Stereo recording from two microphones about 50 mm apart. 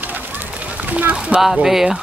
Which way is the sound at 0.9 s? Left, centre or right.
Right.